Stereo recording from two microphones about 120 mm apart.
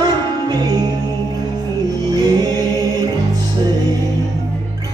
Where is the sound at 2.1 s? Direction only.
35° right (ahead or behind).